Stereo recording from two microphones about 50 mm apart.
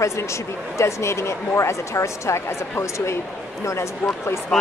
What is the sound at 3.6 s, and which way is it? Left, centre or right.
Speech, left.